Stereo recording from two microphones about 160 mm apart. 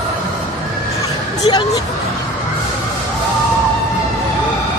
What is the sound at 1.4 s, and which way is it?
Speech, 25° left (ahead or behind).